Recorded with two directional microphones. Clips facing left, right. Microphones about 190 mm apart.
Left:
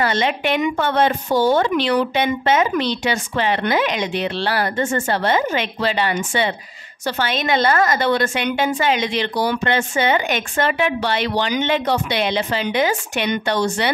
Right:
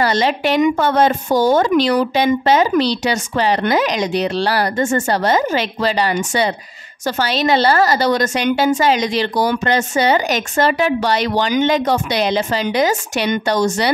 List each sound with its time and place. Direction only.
0.0 s a woman's voice: 35° right (ahead or behind)